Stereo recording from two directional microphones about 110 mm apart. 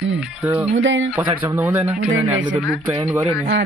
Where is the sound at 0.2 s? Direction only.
10° right (ahead or behind).